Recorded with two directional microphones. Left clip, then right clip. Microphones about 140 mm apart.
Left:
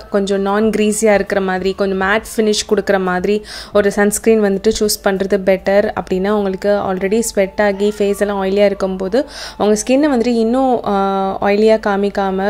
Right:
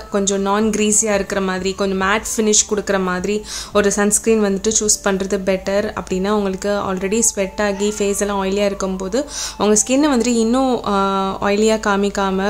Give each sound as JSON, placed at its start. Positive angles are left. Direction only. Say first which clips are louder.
{"t": 0.1, "sound": "a woman's voice", "louder": "left 3 dB", "side_deg": 30}